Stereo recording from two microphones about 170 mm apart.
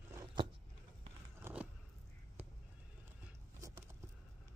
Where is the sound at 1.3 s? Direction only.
10° right (ahead or behind).